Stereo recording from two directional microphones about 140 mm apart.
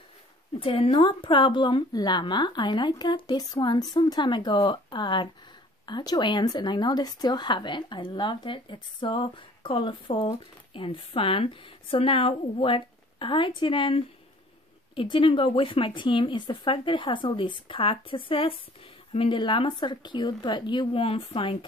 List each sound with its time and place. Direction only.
0.6 s speech: 40° left (ahead or behind)